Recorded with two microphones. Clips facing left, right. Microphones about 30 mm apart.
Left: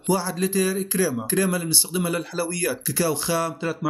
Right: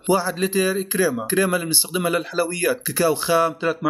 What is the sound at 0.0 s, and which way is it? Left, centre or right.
A man's voice, right.